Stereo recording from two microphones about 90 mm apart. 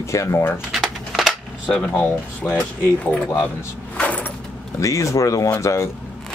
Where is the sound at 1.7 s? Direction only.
10° left (ahead or behind).